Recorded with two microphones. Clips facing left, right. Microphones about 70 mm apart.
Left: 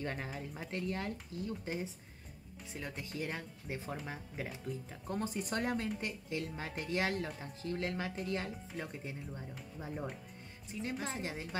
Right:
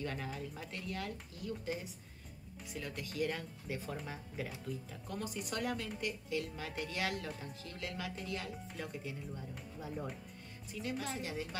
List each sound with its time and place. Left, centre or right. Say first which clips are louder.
0.0 s speech: left 1 dB; left
5.0 s speech: left 5 dB; left